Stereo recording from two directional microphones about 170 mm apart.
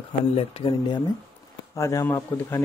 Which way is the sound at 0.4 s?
30° left (ahead or behind).